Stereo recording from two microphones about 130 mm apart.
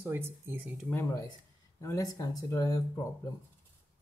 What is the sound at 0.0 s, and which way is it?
Speech, 20° right (ahead or behind).